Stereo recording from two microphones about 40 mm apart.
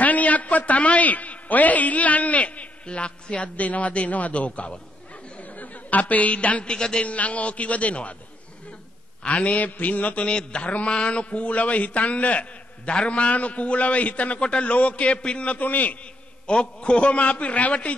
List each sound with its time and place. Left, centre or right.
0.0 s a man's voice: left
7.1 s a man's voice: left
9.2 s a man's voice: left
10.2 s a man's voice: left
15.6 s a man's voice: left
16.4 s a man's voice: left